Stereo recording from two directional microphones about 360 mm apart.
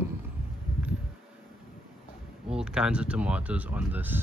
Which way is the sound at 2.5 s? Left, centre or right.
Centre.